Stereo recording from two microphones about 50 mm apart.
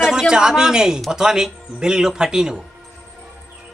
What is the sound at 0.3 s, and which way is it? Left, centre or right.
Speech, centre.